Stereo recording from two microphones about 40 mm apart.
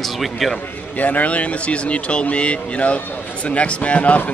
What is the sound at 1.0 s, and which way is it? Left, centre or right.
A man's voice, left.